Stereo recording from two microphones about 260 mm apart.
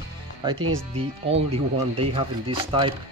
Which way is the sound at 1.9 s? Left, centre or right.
Right.